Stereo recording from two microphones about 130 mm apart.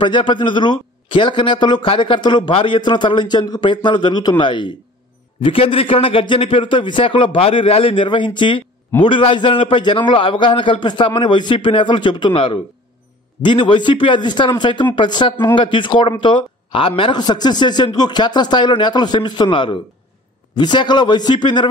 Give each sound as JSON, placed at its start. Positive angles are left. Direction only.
{"t": 0.0, "sound": "a man's voice", "side_deg": 40}